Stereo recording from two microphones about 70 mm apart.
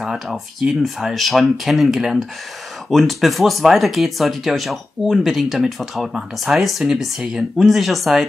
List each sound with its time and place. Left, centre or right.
0.0 s speech: centre